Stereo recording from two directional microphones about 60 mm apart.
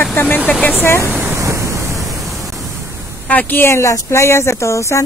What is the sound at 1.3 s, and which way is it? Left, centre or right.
Waves, right.